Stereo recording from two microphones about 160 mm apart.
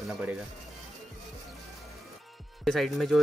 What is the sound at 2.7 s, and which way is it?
Speech, centre (ahead or behind).